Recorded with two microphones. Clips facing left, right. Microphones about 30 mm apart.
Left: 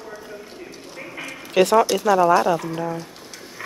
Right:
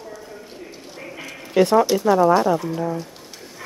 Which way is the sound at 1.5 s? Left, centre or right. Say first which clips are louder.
Even; left.